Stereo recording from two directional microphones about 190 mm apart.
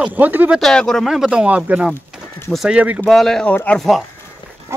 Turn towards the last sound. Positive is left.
turn(degrees=5)  # may be behind; listen again after turning